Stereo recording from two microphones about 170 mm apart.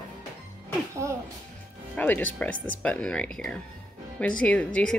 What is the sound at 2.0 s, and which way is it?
Speech, 10° left (ahead or behind).